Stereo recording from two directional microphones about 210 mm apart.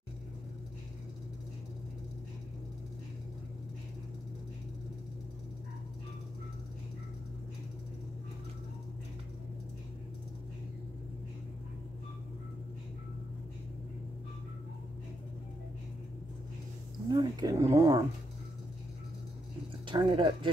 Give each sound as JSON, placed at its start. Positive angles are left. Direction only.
{"t": 17.1, "sound": "speech", "side_deg": -20}
{"t": 19.9, "sound": "speech", "side_deg": -25}